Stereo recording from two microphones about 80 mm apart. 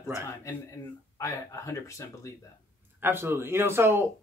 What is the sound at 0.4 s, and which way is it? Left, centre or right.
Speech, left.